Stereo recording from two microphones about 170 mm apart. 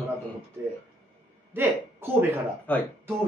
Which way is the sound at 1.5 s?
15° right (ahead or behind).